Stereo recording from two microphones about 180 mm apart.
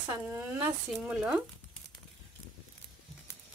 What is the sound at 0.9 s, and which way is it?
Speech, 5° right (ahead or behind).